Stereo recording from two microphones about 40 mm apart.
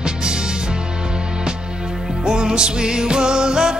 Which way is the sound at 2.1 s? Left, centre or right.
Centre.